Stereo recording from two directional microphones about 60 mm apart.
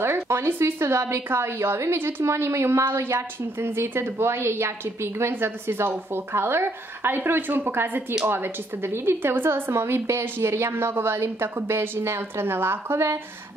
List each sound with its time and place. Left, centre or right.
0.0 s a woman's voice: right